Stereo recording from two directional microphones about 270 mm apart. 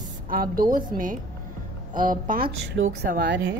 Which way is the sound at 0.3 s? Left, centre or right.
Right.